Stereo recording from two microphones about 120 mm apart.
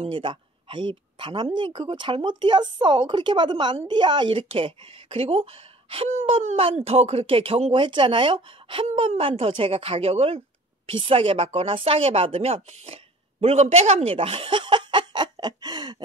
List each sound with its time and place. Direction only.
0.0 s a woman's voice: 45° right (ahead or behind)
8.8 s a woman's voice: 60° right (ahead or behind); by 16.0 s 35° right (ahead or behind)